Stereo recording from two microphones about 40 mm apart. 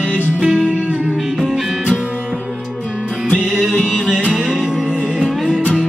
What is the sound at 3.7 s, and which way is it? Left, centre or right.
Music, centre.